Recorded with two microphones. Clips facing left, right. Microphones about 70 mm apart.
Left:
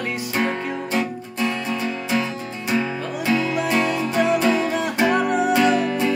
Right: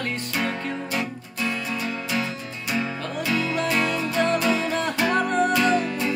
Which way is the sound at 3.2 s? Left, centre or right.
Left.